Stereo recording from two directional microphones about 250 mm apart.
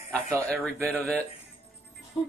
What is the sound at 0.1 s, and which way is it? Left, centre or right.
Speech, centre.